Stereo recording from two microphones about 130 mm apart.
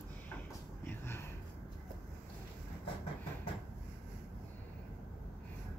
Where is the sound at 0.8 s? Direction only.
15° left (ahead or behind).